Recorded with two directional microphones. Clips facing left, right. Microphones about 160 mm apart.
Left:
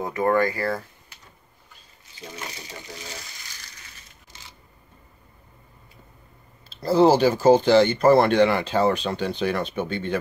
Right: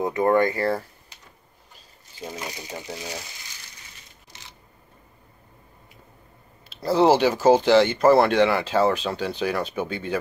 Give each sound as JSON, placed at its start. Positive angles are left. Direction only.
{"t": 0.0, "sound": "speech", "side_deg": -20}
{"t": 6.8, "sound": "speech", "side_deg": -5}